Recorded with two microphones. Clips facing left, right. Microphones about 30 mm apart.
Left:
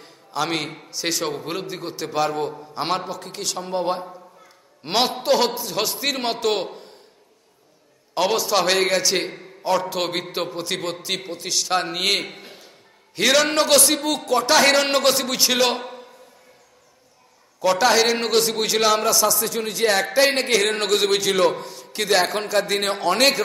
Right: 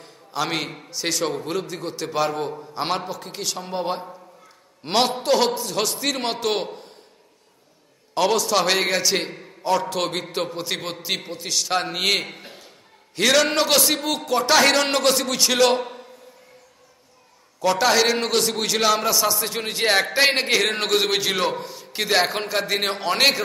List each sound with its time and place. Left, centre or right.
0.0 s a man's voice: centre
1.4 s a man's voice: centre
8.1 s a man's voice: centre
12.4 s a sound: centre
13.1 s a man's voice: centre
17.6 s a man's voice: centre
19.2 s a man's voice: right
20.2 s a man's voice: centre